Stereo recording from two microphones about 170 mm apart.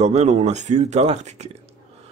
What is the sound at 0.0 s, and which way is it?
A man's voice, 40° right (ahead or behind).